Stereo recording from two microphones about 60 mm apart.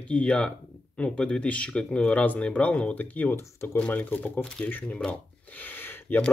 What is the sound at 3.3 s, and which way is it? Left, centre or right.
Speech, left.